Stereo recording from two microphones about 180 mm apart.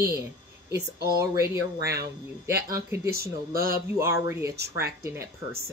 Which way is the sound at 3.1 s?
55° right (ahead or behind).